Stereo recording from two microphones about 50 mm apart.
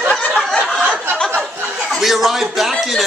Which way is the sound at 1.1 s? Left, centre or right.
Centre.